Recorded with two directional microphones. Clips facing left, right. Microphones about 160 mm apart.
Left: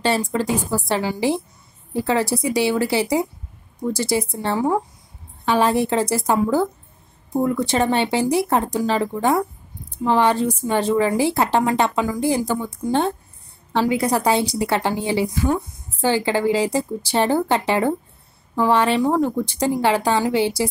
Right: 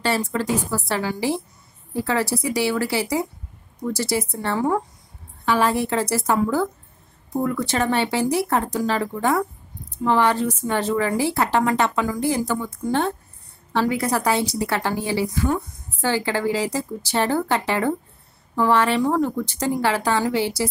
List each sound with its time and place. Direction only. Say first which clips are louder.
0.0 s a woman's voice: left 2 dB; 20° left (ahead or behind)